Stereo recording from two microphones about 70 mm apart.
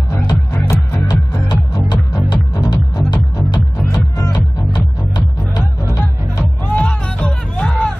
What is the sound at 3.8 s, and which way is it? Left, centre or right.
Music, left.